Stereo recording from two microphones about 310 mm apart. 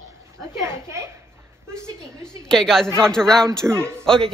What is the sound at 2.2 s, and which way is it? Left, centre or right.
A man's voice, centre.